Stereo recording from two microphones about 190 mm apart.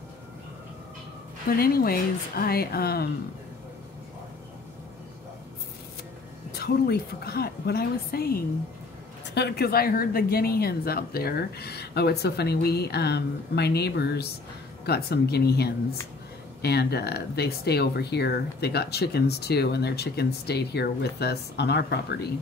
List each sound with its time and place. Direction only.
1.6 s speech: 55° left (ahead or behind)
6.5 s speech: 55° left (ahead or behind)